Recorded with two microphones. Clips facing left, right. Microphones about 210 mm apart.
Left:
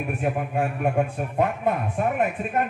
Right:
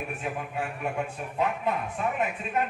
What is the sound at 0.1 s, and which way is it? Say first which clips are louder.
A man's voice: left 7 dB; 50° left (ahead or behind).